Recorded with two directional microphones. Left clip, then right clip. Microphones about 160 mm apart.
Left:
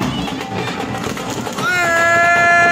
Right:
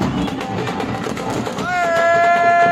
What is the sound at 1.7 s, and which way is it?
Cat, 15° right (ahead or behind).